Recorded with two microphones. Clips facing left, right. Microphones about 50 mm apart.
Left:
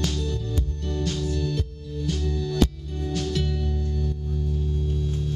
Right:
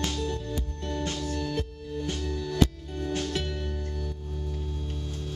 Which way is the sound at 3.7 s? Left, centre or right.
Right.